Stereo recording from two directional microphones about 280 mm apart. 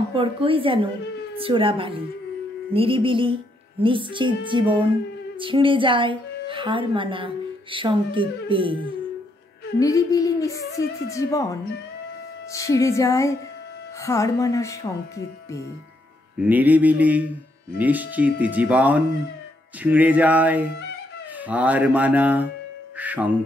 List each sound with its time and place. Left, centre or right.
0.1 s a woman's voice: centre
9.8 s speech: centre
16.3 s speech: centre